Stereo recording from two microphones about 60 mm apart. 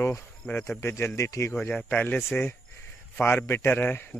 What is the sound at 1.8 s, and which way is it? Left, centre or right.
Speech, left.